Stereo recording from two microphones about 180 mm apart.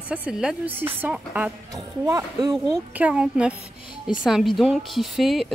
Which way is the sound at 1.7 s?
20° right (ahead or behind).